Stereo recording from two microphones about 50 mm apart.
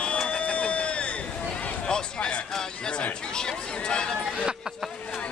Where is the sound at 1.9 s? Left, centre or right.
Centre.